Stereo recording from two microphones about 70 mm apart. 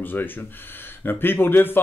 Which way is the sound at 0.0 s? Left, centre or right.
Left.